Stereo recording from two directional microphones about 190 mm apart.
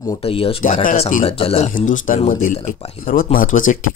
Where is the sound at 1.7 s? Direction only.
45° left (ahead or behind).